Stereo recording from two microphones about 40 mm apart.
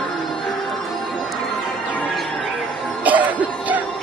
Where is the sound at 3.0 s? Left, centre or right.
Right.